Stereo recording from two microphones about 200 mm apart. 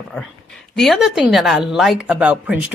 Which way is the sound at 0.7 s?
Centre (ahead or behind).